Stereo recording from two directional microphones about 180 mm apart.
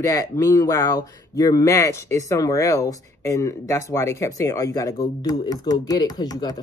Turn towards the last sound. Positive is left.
turn(degrees=20)  # may be behind; listen again after turning